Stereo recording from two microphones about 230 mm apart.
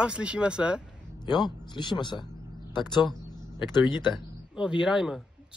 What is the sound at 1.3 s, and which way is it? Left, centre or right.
A man's voice, centre.